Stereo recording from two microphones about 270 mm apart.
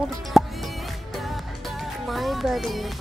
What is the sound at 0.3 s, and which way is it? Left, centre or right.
Music, centre.